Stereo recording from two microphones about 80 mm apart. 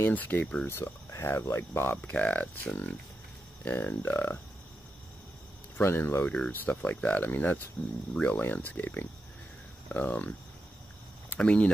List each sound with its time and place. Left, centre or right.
0.0 s speech: left
0.7 s speech: left
2.0 s speech: centre
5.8 s speech: left
6.2 s speech: centre